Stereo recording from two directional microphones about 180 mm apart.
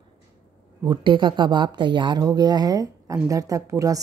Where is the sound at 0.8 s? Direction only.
25° right (ahead or behind).